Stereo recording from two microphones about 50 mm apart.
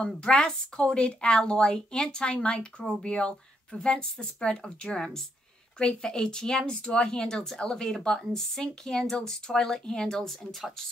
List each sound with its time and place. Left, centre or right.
0.0 s speech: left; by 10.7 s centre